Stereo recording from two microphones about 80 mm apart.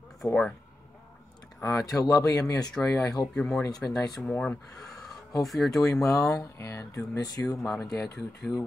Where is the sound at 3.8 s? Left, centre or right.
Left.